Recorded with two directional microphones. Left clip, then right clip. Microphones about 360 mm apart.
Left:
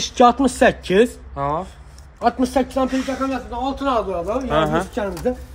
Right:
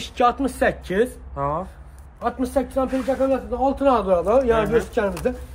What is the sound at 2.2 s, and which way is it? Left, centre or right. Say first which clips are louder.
Speech: left 6 dB; left.